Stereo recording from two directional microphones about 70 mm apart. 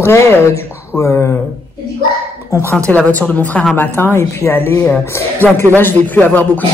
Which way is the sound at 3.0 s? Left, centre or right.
Left.